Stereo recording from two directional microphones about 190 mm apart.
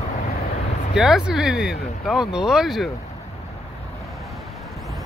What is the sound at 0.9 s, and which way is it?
Speech, 5° right (ahead or behind).